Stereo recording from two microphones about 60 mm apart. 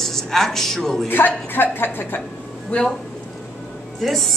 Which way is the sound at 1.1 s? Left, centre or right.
Left.